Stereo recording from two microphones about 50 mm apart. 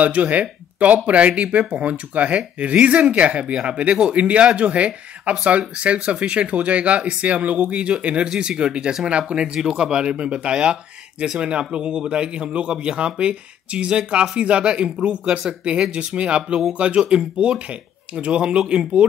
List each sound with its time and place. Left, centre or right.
0.0 s speech: right